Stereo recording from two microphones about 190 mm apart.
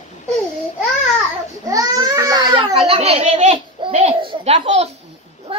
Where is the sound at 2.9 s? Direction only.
30° right (ahead or behind).